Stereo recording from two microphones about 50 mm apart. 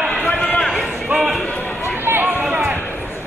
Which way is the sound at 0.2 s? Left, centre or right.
Left.